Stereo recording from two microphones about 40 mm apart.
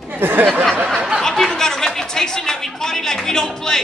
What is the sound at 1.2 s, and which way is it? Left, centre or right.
A man's voice, centre.